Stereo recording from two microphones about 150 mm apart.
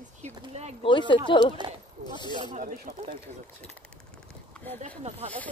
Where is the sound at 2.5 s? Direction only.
65° right (ahead or behind).